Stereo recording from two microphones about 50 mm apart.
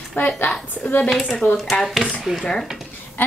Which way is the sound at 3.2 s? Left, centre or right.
Left.